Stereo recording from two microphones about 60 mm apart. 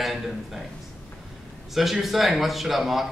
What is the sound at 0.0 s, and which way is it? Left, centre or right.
Speech, centre.